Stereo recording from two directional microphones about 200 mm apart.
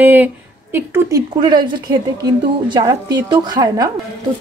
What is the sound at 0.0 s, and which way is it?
A woman's voice, 10° right (ahead or behind).